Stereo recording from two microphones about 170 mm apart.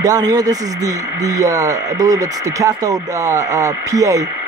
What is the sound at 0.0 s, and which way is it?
Speech, 20° right (ahead or behind).